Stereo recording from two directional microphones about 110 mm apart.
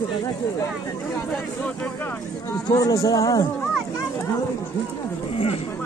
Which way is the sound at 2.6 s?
30° left (ahead or behind).